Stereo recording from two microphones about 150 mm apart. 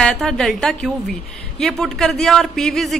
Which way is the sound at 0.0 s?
5° left (ahead or behind).